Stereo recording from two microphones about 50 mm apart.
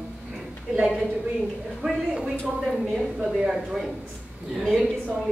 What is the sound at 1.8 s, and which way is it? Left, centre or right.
Speech, right.